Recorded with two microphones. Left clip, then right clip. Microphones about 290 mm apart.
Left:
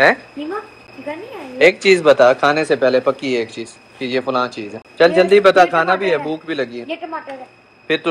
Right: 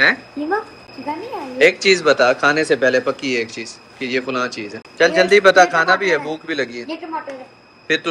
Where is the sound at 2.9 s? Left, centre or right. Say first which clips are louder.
Left 2 dB; left.